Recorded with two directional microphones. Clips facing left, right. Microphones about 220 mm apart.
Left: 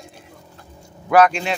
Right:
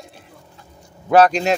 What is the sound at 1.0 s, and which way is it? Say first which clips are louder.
Speech: right 2 dB; 30° right (ahead or behind).